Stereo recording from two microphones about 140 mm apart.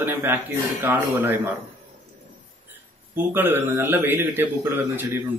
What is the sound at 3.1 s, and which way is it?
Speech, 15° right (ahead or behind).